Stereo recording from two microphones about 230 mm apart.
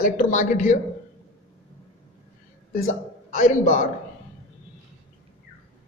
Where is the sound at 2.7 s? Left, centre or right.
Left.